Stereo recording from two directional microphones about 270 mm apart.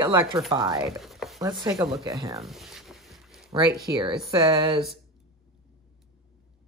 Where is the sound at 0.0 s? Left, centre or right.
Centre.